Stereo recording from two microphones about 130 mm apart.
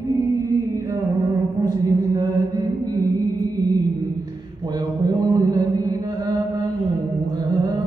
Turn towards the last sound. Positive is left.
turn(degrees=-30)  # may be behind; listen again after turning